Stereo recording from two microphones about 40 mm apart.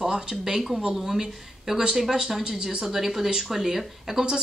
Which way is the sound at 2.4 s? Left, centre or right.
Centre.